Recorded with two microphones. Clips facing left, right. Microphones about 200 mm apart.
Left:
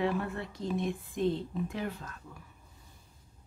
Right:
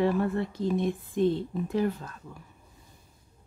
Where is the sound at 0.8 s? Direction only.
35° right (ahead or behind).